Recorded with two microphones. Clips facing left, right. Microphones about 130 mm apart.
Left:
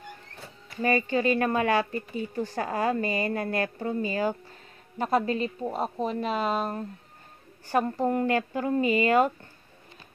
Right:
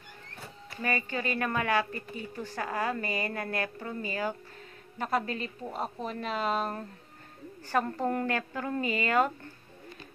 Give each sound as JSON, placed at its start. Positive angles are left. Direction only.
{"t": 0.8, "sound": "a woman's voice", "side_deg": 25}